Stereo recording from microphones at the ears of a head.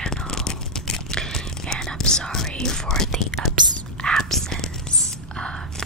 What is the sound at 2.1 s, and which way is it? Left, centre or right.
Whispering, centre.